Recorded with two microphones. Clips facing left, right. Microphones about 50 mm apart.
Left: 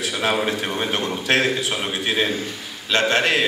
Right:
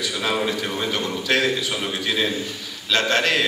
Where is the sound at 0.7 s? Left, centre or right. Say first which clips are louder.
Left 1 dB; left.